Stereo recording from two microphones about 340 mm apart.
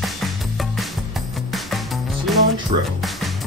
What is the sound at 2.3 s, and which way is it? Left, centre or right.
Music, centre.